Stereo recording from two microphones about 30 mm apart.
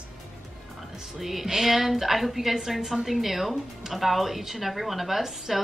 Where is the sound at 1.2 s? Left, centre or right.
Centre.